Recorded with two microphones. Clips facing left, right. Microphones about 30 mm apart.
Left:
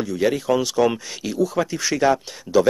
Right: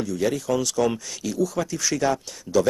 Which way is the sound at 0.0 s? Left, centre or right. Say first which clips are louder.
Left 3 dB; left.